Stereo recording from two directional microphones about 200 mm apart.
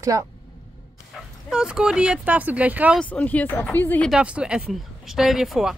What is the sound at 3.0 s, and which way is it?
Speech, 5° left (ahead or behind).